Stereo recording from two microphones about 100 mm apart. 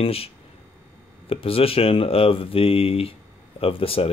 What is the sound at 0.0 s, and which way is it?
Speech, 75° left (ahead or behind).